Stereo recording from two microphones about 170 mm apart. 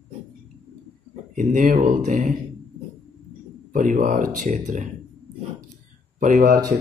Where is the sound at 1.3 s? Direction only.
50° right (ahead or behind).